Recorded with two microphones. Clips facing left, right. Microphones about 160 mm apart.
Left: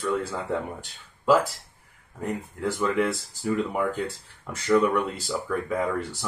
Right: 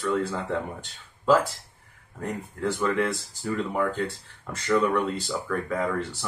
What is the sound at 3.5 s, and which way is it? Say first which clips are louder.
Speech: left 1 dB; 10° left (ahead or behind).